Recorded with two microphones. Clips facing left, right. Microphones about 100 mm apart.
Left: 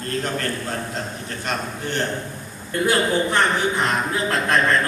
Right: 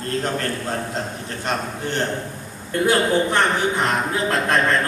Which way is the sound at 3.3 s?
45° right (ahead or behind).